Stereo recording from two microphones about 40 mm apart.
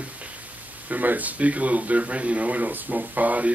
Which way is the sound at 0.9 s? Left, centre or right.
Right.